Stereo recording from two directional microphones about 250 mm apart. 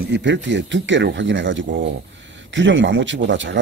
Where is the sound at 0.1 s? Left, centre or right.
Right.